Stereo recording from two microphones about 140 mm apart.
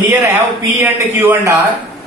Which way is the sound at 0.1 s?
15° right (ahead or behind).